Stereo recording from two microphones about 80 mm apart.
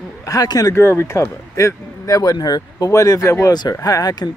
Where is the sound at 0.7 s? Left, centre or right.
Left.